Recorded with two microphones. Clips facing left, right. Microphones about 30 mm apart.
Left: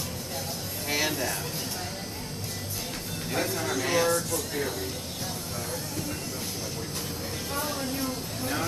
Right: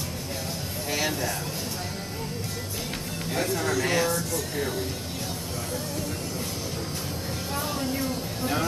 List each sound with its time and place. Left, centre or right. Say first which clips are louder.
0.8 s a sound: even; centre
3.3 s speech: right 2 dB; centre
7.5 s speech: right 2 dB; centre